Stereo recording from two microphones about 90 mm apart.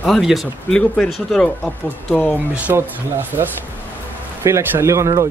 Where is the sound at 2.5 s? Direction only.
25° right (ahead or behind).